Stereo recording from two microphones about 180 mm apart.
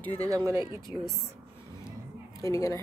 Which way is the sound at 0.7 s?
25° left (ahead or behind).